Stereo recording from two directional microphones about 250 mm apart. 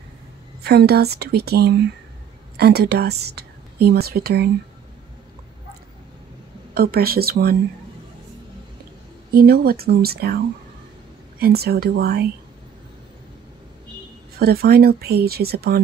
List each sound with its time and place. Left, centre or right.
0.7 s a woman's voice: right
6.7 s speech: right
9.3 s speech: right
14.4 s speech: right